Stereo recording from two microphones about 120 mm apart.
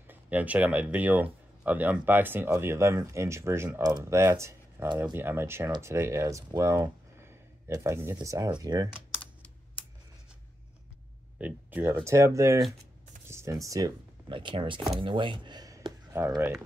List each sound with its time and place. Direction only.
0.0 s speech: 15° right (ahead or behind); by 8.9 s 30° right (ahead or behind)
9.2 s typing: 10° left (ahead or behind)
11.3 s speech: 15° right (ahead or behind); by 13.9 s 30° right (ahead or behind)
14.3 s speech: 45° right (ahead or behind)
16.3 s speech: 10° right (ahead or behind)